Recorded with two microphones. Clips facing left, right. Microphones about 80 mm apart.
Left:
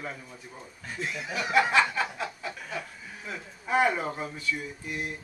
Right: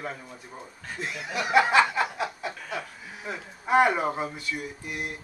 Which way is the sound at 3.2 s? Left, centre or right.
Centre.